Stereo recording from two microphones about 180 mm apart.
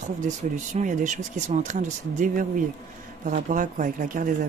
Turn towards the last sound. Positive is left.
turn(degrees=-45)  # may be behind; listen again after turning